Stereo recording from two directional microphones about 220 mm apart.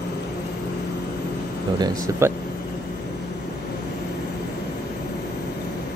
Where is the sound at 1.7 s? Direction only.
15° right (ahead or behind).